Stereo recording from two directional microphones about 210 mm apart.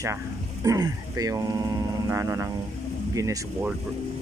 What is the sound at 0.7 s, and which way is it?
Speech, 15° right (ahead or behind).